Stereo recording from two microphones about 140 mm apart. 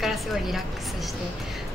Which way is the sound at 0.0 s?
Centre (ahead or behind).